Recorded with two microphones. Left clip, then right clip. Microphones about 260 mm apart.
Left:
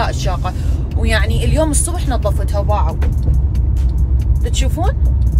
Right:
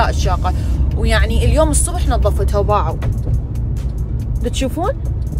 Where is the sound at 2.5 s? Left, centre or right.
Right.